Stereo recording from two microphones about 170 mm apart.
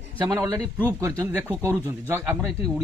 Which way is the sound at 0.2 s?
20° right (ahead or behind).